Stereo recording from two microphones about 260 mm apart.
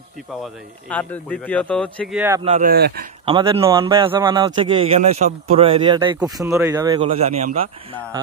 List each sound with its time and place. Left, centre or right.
0.4 s a man's voice: centre
2.4 s speech: right
3.3 s speech: centre